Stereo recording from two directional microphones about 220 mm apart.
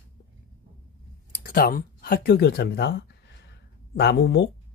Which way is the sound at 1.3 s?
45° left (ahead or behind).